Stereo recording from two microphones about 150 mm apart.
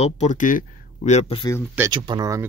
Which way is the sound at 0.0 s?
50° left (ahead or behind).